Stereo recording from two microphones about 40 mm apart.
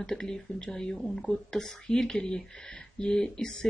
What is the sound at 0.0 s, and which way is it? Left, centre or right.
Speech, centre.